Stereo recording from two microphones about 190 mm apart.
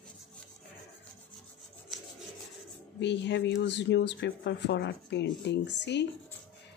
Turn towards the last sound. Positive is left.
turn(degrees=65)  # may be behind; listen again after turning